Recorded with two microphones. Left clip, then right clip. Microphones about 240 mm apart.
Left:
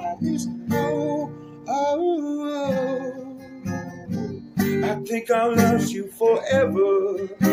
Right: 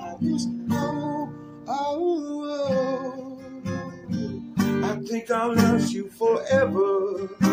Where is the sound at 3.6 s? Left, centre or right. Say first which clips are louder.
Left 1 dB; centre.